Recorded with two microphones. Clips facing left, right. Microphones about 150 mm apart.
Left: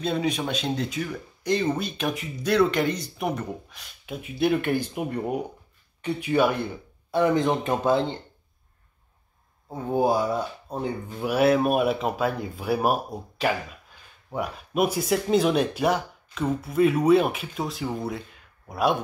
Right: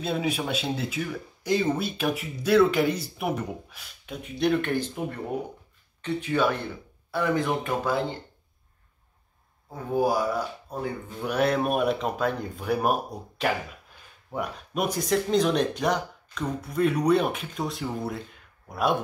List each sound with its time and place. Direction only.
0.0 s speech: 5° right (ahead or behind)
4.0 s speech: 5° left (ahead or behind); by 8.2 s 25° left (ahead or behind)
9.7 s speech: 25° left (ahead or behind)
11.1 s speech: 5° left (ahead or behind)